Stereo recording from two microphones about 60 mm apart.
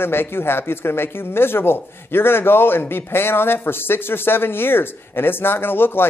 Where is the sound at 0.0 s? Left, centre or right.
Left.